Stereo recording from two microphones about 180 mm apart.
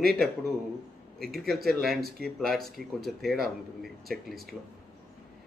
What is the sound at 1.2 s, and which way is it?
A man's voice, centre (ahead or behind).